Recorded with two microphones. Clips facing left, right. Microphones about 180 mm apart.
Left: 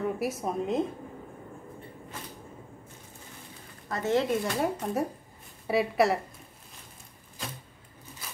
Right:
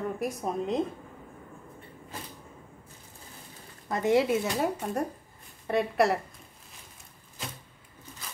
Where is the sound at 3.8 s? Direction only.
15° right (ahead or behind); by 6.2 s centre (ahead or behind).